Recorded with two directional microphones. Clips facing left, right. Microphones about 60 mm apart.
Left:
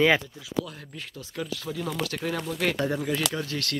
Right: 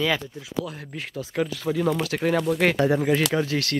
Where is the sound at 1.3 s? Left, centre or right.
Right.